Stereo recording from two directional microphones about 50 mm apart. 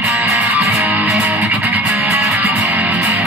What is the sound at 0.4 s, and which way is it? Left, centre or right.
Music, right.